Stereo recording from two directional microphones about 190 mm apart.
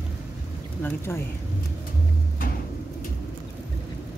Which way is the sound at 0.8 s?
15° left (ahead or behind).